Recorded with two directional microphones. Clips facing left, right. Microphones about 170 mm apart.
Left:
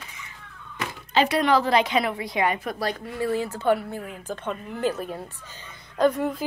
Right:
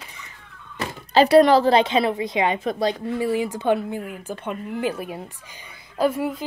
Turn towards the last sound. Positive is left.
turn(degrees=-5)  # may be behind; listen again after turning